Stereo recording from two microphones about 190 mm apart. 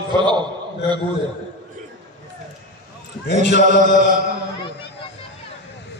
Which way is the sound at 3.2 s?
65° left (ahead or behind).